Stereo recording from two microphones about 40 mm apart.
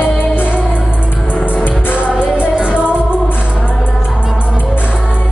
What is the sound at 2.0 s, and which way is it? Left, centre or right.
Music, right.